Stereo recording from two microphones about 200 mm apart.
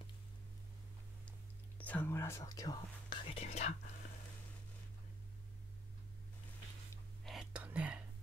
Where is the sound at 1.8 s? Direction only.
10° left (ahead or behind); by 3.7 s 30° left (ahead or behind).